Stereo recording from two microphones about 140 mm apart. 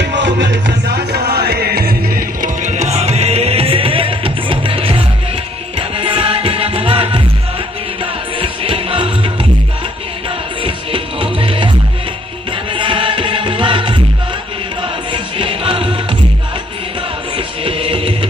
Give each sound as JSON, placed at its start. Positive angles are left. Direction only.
{"t": 1.4, "sound": "music", "side_deg": -90}
{"t": 10.6, "sound": "music", "side_deg": -40}
{"t": 12.7, "sound": "music", "side_deg": -35}
{"t": 15.3, "sound": "music", "side_deg": -40}
{"t": 17.6, "sound": "music", "side_deg": -40}